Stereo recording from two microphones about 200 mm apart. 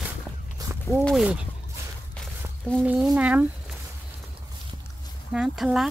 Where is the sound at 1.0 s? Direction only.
5° right (ahead or behind).